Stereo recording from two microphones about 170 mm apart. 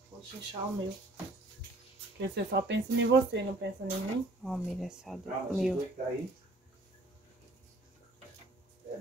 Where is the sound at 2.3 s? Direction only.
85° right.